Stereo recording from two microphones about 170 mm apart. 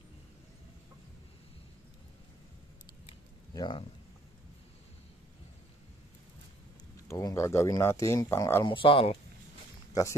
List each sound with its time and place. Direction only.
3.5 s speech: 30° left (ahead or behind)
7.1 s speech: 15° left (ahead or behind)
8.6 s speech: 30° left (ahead or behind)